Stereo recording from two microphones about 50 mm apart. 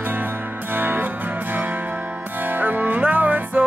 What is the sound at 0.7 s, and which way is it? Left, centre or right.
Music, right.